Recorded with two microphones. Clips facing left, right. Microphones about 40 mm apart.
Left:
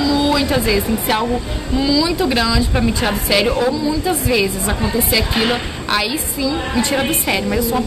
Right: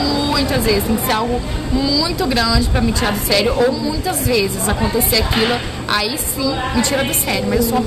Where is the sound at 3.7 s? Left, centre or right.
Centre.